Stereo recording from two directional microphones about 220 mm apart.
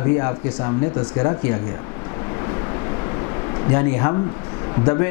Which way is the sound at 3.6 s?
15° left (ahead or behind).